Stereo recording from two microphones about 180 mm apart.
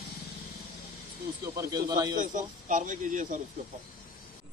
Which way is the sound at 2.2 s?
45° right (ahead or behind).